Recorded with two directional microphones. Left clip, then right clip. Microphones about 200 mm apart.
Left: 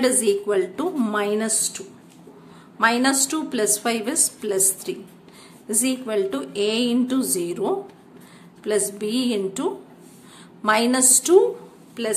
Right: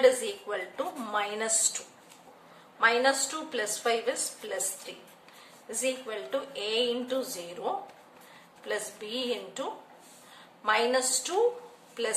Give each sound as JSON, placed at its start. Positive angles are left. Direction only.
{"t": 0.0, "sound": "a woman's voice", "side_deg": 40}
{"t": 2.8, "sound": "a woman's voice", "side_deg": 45}
{"t": 11.9, "sound": "a woman's voice", "side_deg": 25}